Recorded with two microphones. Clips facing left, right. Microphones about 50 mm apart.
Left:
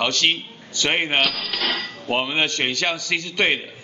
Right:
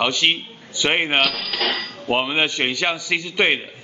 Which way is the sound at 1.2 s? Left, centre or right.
Centre.